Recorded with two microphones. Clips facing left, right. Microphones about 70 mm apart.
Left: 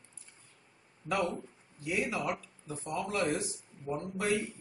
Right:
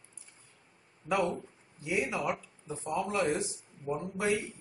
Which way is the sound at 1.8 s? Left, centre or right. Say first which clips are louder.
Right 1 dB; centre.